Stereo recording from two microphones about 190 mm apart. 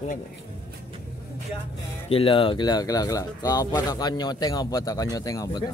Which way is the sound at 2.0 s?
30° left (ahead or behind).